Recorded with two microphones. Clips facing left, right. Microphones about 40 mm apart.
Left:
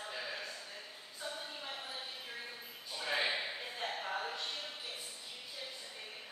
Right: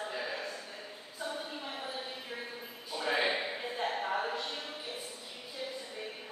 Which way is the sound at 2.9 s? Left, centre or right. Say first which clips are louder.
Right 5 dB; right.